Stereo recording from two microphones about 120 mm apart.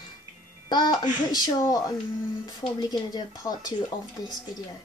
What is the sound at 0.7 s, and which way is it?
Speech, 35° left (ahead or behind).